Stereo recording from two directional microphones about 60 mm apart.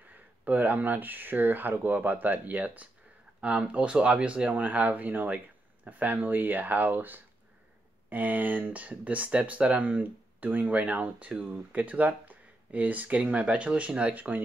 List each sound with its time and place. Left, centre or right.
0.1 s speech: right